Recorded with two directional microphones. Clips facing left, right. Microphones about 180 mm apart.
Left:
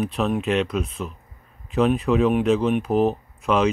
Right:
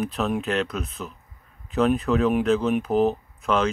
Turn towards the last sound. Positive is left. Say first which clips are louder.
# left 2 dB
turn(degrees=0)  # may be behind; listen again after turning